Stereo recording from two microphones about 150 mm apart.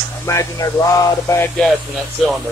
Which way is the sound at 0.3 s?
20° left (ahead or behind).